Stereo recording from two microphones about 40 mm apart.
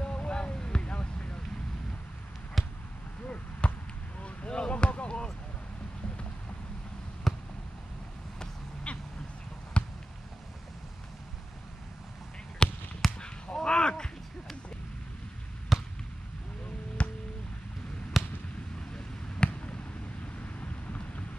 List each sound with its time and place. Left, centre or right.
0.0 s a sound: left
2.6 s basketball bounce: centre
3.6 s basketball bounce: left
7.3 s basketball bounce: centre
8.9 s duck: left
9.8 s basketball bounce: left
12.6 s basketball bounce: left
13.2 s dog: left
15.7 s fireworks: centre
17.0 s music: left
18.1 s a sound: centre
18.9 s a sound: left
20.4 s vehicle: left